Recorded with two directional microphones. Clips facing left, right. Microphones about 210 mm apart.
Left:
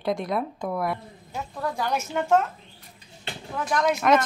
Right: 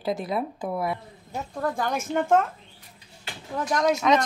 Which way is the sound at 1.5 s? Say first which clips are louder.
Right 1 dB; 50° right (ahead or behind).